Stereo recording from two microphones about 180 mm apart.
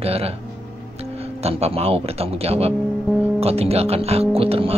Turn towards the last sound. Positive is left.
turn(degrees=-35)  # may be behind; listen again after turning